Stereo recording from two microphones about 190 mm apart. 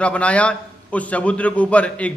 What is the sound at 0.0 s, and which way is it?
A man's voice, 5° left (ahead or behind).